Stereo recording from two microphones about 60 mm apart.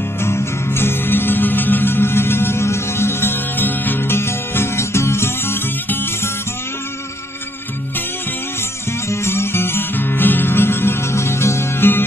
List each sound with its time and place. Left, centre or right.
0.2 s music: left
9.1 s music: left